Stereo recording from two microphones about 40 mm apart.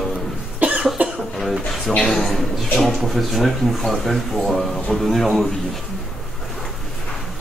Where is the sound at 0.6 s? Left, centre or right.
Right.